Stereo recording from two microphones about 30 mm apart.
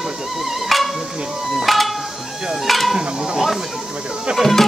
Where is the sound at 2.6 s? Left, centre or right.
Centre.